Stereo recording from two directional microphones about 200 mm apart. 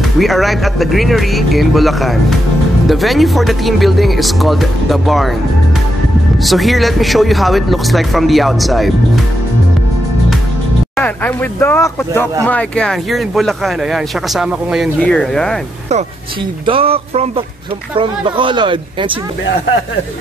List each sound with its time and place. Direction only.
0.2 s speech: centre (ahead or behind)
6.4 s speech: centre (ahead or behind)
11.0 s speech: 10° left (ahead or behind)
16.6 s speech: 30° right (ahead or behind)